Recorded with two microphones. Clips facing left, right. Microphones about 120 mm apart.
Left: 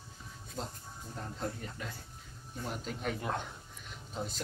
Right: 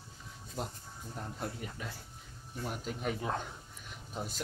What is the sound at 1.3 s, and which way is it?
Speech, 10° right (ahead or behind).